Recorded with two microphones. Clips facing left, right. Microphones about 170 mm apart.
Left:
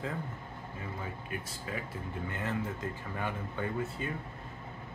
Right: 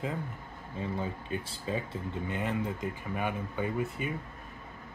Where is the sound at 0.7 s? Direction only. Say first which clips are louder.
Right 8 dB; 30° right (ahead or behind).